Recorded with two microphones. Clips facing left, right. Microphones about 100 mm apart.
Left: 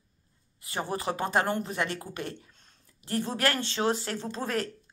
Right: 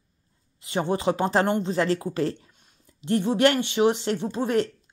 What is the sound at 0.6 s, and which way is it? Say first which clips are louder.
A woman's voice: right 7 dB; 25° right (ahead or behind).